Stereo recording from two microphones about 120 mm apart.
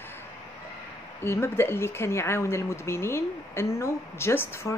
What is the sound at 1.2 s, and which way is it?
Speech, 20° left (ahead or behind).